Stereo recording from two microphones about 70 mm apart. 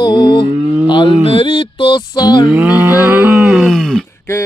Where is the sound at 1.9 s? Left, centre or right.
Left.